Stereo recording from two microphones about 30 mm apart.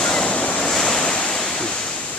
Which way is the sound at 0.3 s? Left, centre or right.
Left.